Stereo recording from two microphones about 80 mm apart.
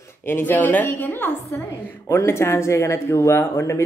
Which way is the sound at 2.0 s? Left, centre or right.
Left.